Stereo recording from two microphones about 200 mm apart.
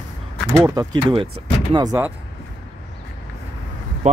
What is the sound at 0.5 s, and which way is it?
Speech, 20° right (ahead or behind).